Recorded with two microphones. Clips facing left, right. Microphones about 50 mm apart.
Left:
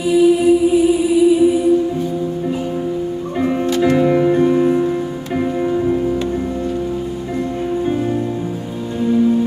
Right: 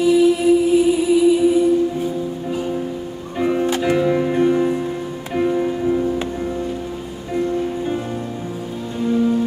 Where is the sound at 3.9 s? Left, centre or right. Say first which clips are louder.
Left 4 dB; centre.